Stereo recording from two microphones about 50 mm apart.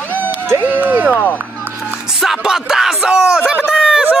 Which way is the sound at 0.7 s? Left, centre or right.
Right.